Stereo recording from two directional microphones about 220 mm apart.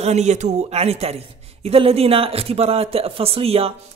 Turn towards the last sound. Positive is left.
turn(degrees=-25)  # may be behind; listen again after turning